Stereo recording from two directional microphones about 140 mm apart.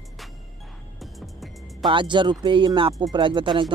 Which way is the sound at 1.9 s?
35° right (ahead or behind).